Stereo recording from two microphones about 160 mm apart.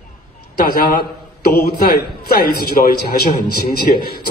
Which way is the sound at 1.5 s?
75° left (ahead or behind).